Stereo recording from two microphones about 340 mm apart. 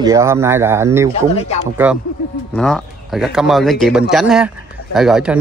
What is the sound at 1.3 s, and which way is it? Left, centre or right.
Speech, centre.